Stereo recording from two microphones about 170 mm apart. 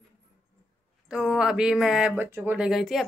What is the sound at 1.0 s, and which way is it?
Speech, 5° right (ahead or behind).